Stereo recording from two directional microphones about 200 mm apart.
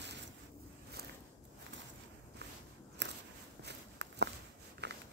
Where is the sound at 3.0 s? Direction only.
60° right (ahead or behind).